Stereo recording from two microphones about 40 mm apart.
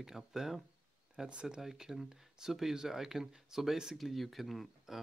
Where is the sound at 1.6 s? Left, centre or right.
Centre.